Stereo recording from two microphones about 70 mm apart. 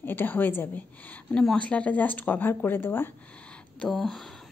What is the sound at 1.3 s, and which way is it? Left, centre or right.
A woman's voice, centre.